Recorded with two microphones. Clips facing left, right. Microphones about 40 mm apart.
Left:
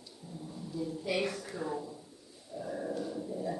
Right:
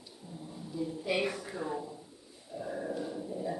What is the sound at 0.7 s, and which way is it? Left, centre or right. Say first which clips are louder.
Speech: right 1 dB; centre.